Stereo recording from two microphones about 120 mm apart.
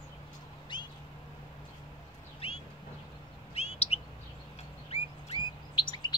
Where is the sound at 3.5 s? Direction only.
60° left (ahead or behind).